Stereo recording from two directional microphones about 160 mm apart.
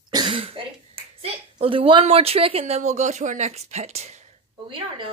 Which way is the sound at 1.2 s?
35° right (ahead or behind).